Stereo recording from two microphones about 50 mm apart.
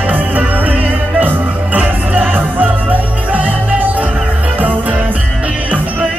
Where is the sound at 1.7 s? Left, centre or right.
Right.